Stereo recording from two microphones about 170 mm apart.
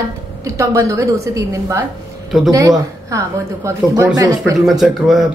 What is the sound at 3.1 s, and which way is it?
A woman's voice, 20° right (ahead or behind).